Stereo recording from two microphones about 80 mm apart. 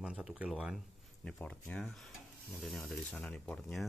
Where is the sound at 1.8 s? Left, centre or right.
Centre.